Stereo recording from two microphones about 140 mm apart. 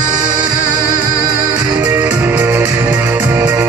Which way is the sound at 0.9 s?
30° right (ahead or behind).